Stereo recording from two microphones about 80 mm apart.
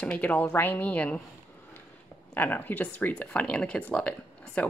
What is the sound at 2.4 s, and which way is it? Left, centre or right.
Speech, left.